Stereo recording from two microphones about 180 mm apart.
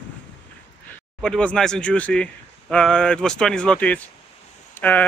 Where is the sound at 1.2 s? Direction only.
5° left (ahead or behind).